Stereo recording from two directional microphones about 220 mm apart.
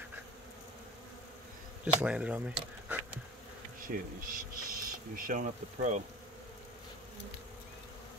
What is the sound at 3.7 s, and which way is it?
Bee, 40° right (ahead or behind).